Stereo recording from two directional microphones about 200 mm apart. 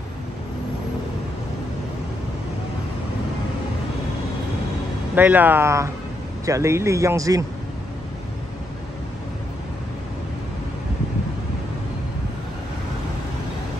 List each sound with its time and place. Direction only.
5.1 s speech: 10° right (ahead or behind)